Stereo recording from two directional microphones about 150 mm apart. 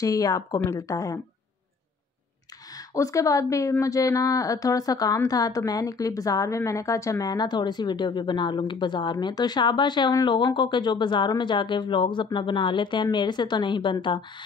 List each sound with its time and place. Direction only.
0.0 s a woman's voice: 20° left (ahead or behind)
2.9 s a woman's voice: 20° left (ahead or behind)